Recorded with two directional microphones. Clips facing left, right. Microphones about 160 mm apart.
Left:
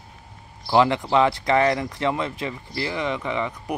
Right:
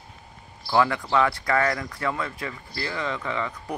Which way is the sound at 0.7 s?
20° left (ahead or behind).